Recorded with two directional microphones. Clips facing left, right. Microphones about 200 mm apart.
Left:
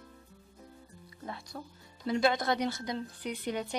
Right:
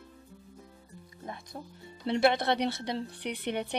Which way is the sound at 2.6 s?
65° right (ahead or behind).